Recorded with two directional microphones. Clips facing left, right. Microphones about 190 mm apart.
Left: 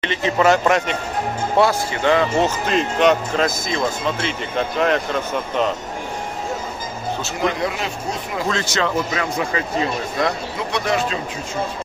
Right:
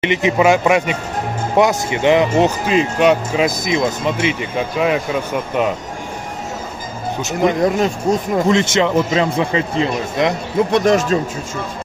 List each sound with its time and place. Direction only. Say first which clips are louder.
0.0 s speech: right 3 dB; 15° right (ahead or behind)
7.6 s speech: right 8 dB; 45° right (ahead or behind)
8.5 s a man's voice: right 6 dB; 20° right (ahead or behind)
10.7 s speech: right 6 dB; 45° right (ahead or behind)